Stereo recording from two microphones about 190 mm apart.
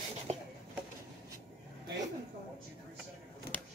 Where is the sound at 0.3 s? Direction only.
35° right (ahead or behind).